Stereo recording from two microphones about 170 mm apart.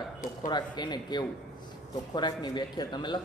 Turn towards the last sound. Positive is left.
turn(degrees=25)  # may be behind; listen again after turning